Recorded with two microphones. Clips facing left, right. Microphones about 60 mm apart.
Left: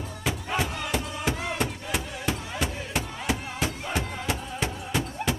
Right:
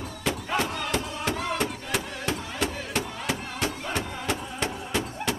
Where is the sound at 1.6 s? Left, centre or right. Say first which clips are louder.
Right 1 dB; centre.